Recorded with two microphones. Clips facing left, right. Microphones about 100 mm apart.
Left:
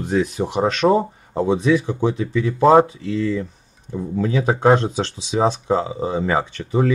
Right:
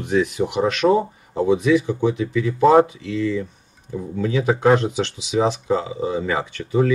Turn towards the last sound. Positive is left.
turn(degrees=35)  # may be behind; listen again after turning